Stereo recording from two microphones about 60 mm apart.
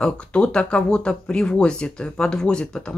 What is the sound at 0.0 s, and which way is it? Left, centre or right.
Speech, centre.